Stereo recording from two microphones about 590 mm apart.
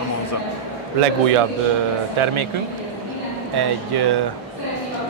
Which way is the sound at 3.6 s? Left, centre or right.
Right.